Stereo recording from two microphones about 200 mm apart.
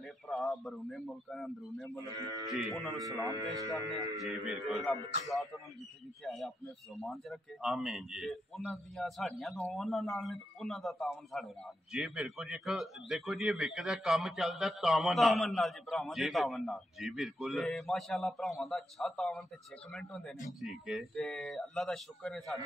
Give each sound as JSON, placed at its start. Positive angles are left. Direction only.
{"t": 0.3, "sound": "a man's voice", "side_deg": 0}
{"t": 3.3, "sound": "speech", "side_deg": -15}
{"t": 4.1, "sound": "a man's voice", "side_deg": 0}
{"t": 6.2, "sound": "a man's voice", "side_deg": 0}